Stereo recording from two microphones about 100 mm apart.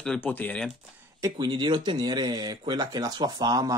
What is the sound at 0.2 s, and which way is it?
Speech, 15° left (ahead or behind).